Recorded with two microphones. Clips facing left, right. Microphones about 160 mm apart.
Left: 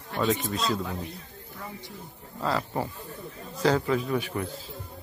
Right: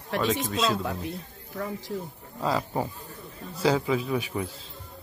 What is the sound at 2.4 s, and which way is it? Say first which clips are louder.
A man's voice: right 1 dB; 10° right (ahead or behind).